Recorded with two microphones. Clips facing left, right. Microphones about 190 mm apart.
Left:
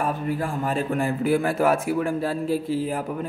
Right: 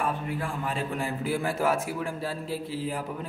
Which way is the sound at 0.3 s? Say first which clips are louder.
Left 6 dB; 45° left (ahead or behind).